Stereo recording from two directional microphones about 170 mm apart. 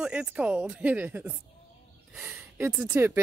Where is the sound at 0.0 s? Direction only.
5° right (ahead or behind).